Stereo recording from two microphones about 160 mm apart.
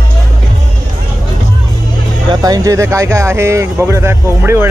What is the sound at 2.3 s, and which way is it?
Speech, 25° right (ahead or behind).